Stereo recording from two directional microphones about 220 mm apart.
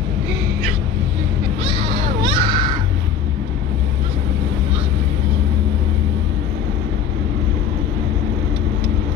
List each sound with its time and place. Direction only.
2.2 s crow: 20° right (ahead or behind)